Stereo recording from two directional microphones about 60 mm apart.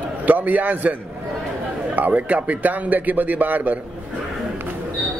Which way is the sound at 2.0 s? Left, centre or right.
Right.